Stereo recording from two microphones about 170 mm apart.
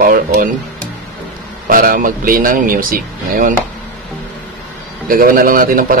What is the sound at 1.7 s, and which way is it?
Speech, 55° right (ahead or behind).